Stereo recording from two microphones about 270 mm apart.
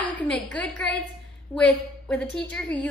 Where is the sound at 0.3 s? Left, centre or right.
Centre.